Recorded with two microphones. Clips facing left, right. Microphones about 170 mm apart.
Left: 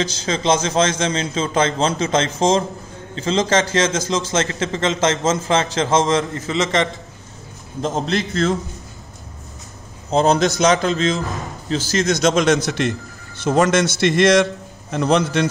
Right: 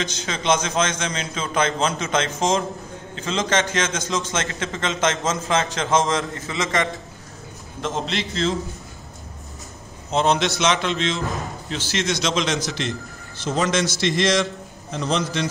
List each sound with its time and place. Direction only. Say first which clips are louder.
0.0 s a man's voice: left 5 dB; 35° left (ahead or behind); by 6.9 s 20° left (ahead or behind)
7.8 s a man's voice: left 5 dB; 40° left (ahead or behind)
10.1 s a man's voice: left 4 dB; 40° left (ahead or behind); by 15.4 s 65° left (ahead or behind)